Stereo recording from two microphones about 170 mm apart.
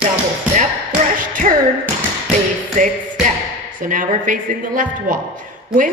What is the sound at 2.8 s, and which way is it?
Music, 50° right (ahead or behind).